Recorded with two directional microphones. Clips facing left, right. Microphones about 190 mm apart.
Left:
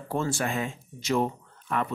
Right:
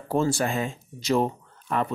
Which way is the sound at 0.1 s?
35° right (ahead or behind).